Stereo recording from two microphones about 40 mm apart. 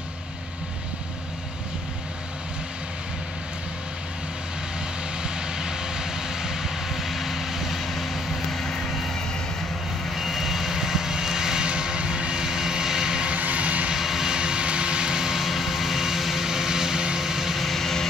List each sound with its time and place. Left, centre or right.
5.6 s vehicle: centre
13.3 s vehicle: right
13.9 s vehicle: centre
17.6 s vehicle: centre